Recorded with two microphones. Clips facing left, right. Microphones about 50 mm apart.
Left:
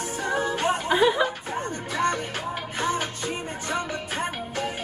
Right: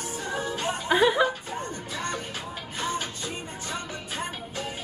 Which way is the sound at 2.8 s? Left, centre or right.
Left.